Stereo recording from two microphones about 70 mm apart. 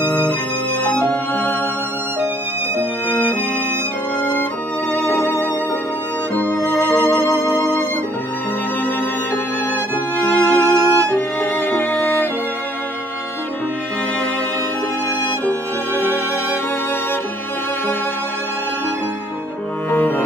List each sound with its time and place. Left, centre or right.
0.8 s music: left
3.1 s violin: left
4.2 s music: left
10.2 s music: centre
15.4 s music: left
19.9 s cello: left